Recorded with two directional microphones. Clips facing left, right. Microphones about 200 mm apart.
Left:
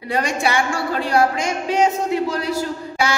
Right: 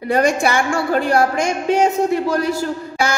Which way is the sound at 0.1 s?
50° right (ahead or behind).